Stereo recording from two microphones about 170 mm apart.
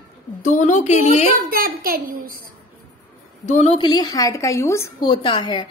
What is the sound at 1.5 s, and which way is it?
Speech, 60° right (ahead or behind).